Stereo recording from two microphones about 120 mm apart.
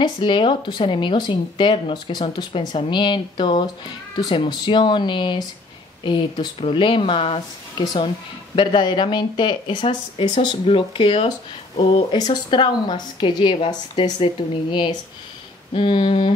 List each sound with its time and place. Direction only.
0.0 s speech: 40° left (ahead or behind)
7.8 s speech: 40° left (ahead or behind)